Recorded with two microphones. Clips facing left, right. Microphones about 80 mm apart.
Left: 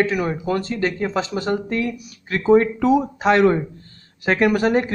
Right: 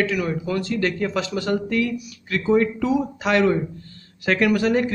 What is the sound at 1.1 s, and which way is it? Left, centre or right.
A man's voice, left.